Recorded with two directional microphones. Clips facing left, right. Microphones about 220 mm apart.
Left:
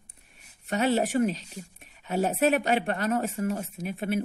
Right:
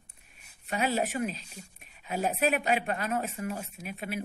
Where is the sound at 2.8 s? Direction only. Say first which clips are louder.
Left 5 dB; 30° left (ahead or behind).